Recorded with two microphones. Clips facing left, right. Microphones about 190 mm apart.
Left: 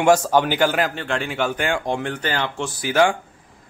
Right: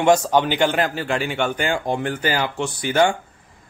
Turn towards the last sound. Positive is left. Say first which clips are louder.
# even
turn(degrees=5)  # may be behind; listen again after turning